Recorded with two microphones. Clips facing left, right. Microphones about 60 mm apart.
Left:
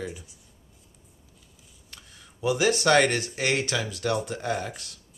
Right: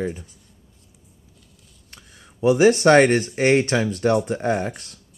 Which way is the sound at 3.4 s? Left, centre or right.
Right.